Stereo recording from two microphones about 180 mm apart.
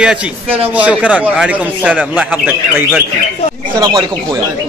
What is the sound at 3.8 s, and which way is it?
Speech, 20° right (ahead or behind).